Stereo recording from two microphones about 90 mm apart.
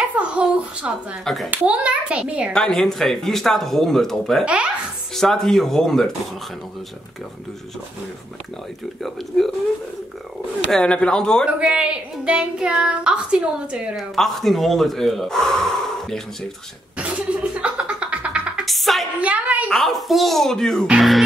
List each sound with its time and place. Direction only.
0.3 s a woman's voice: 10° right (ahead or behind)
1.2 s speech: centre (ahead or behind)
1.5 s a woman's voice: 15° right (ahead or behind)
2.5 s speech: 5° left (ahead or behind)
9.3 s speech: 5° left (ahead or behind)
10.7 s speech: 10° left (ahead or behind)
11.6 s a woman's voice: 10° right (ahead or behind)
13.9 s speech: centre (ahead or behind)
17.0 s music: 15° right (ahead or behind)
18.7 s a sound: centre (ahead or behind)
19.2 s a sound: 15° right (ahead or behind)
19.7 s speech: centre (ahead or behind)